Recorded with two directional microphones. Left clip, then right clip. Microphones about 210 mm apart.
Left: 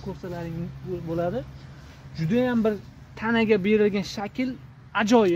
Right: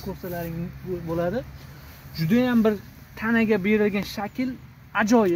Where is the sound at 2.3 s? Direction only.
10° left (ahead or behind).